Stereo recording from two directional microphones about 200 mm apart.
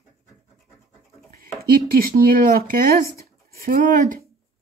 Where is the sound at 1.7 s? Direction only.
50° right (ahead or behind).